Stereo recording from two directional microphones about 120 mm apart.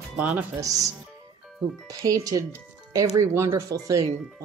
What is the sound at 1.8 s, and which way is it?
Speech, 30° right (ahead or behind).